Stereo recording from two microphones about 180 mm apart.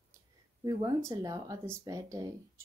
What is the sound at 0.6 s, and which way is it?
Speech, 20° right (ahead or behind).